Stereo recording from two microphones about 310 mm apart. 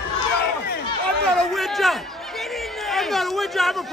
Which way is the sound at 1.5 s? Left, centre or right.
Centre.